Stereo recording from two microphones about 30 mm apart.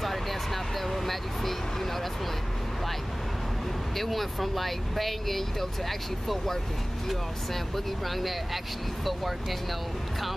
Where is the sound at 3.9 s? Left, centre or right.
Centre.